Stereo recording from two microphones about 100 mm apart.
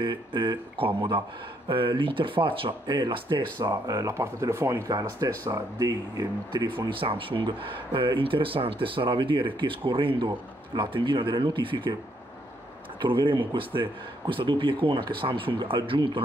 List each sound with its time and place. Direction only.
0.0 s speech: 50° right (ahead or behind)
3.6 s speech: 35° right (ahead or behind)
6.5 s speech: 45° right (ahead or behind)
6.9 s speech: 60° right (ahead or behind)
13.0 s speech: 55° right (ahead or behind)